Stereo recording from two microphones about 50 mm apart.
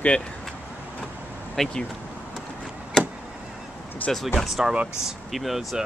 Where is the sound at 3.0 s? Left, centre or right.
Centre.